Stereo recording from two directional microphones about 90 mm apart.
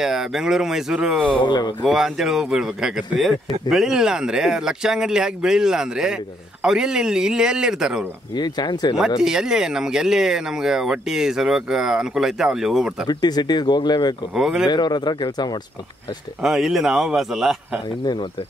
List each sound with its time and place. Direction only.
0.0 s speech: 5° right (ahead or behind)
1.4 s speech: 55° left (ahead or behind)
1.9 s speech: 5° right (ahead or behind)
8.4 s speech: 55° left (ahead or behind)
9.2 s speech: 5° right (ahead or behind)
13.0 s speech: 50° left (ahead or behind)
14.3 s speech: 5° right (ahead or behind)
14.7 s speech: 50° left (ahead or behind)
16.4 s speech: 5° right (ahead or behind)